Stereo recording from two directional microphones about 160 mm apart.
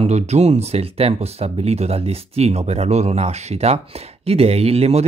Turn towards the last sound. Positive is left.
turn(degrees=-40)  # may be behind; listen again after turning